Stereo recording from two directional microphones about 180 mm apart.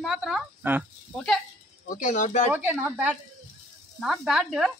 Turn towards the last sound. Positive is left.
turn(degrees=0)  # may be behind; listen again after turning